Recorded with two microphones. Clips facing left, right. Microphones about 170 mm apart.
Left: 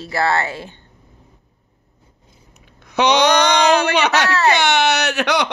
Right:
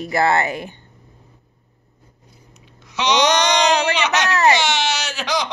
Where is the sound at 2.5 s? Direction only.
55° left (ahead or behind).